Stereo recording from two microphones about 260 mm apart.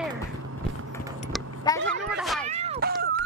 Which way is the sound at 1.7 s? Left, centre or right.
Centre.